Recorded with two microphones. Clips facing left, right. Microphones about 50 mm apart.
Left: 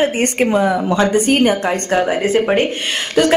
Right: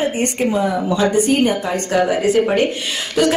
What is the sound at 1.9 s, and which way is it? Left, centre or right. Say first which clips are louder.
Speech: right 1 dB; left.